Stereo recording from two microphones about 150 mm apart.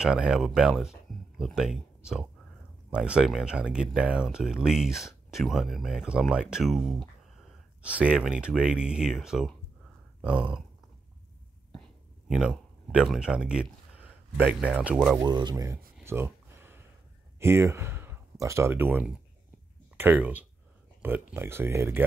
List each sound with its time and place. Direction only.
0.0 s speech: 5° right (ahead or behind)
12.3 s speech: 5° right (ahead or behind)
15.1 s speech: 30° right (ahead or behind)
16.0 s a sound: 15° right (ahead or behind)
17.4 s speech: 15° right (ahead or behind)